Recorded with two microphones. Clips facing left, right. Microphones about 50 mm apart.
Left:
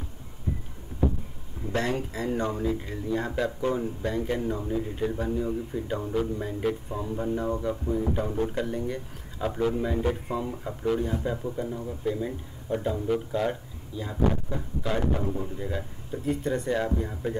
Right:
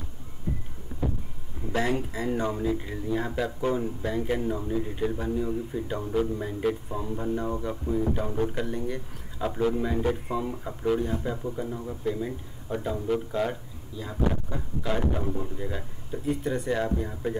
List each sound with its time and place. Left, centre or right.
1.7 s speech: centre
14.3 s speech: centre